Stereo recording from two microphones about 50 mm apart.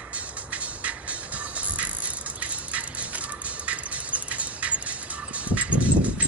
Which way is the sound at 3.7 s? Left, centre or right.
Right.